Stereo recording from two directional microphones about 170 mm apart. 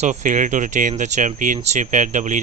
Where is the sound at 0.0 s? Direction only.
45° right (ahead or behind).